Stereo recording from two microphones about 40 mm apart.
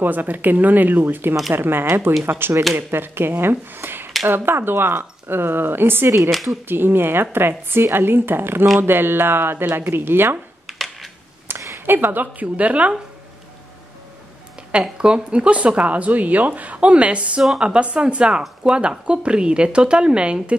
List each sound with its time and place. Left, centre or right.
0.0 s speech: right
1.0 s speech: right
6.3 s speech: centre
6.7 s speech: right
10.7 s a sound: centre
11.4 s a sound: right
12.5 s speech: right
14.8 s speech: right